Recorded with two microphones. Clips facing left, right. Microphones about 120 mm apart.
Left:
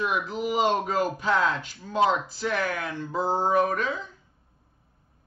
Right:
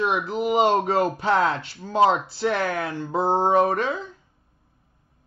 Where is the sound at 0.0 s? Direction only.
30° right (ahead or behind).